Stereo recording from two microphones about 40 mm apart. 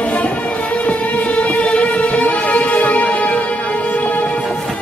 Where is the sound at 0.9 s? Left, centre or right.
Left.